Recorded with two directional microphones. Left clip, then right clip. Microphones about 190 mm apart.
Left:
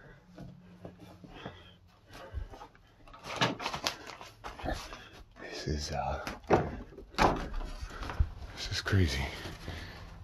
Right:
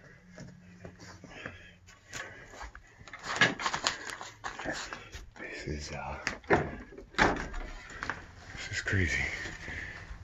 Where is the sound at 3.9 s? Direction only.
10° left (ahead or behind).